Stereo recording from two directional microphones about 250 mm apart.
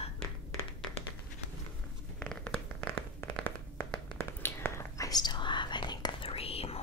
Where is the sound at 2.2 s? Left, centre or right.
Centre.